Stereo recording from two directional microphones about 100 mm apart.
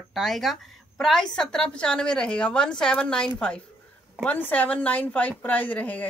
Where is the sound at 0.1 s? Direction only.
Centre (ahead or behind).